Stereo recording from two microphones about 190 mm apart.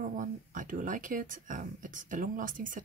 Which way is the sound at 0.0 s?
45° right (ahead or behind).